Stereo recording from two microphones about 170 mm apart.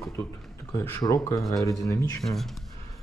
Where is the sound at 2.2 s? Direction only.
Centre (ahead or behind).